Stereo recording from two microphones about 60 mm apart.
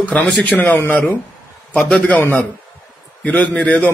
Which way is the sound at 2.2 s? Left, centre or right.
Left.